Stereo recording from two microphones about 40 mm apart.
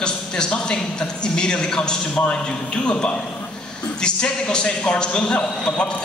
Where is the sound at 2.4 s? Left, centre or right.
Left.